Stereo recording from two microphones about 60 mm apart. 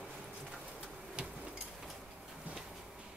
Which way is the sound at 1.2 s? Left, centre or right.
Centre.